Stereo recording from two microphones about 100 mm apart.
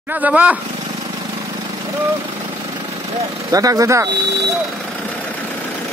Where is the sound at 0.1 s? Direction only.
15° right (ahead or behind).